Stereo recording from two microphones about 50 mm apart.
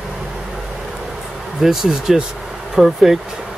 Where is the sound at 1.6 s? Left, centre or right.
Centre.